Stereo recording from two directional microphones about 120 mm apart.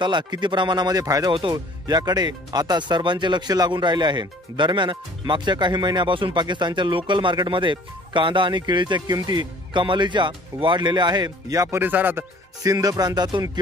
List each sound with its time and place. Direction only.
0.0 s speech: 40° right (ahead or behind)
11.8 s speech: 15° right (ahead or behind)
12.6 s speech: 30° right (ahead or behind)